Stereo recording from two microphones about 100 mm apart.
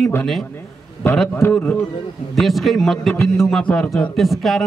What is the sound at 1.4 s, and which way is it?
Speech, 15° left (ahead or behind).